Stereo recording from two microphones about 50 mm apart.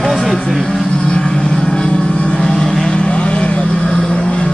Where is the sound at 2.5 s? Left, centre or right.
Centre.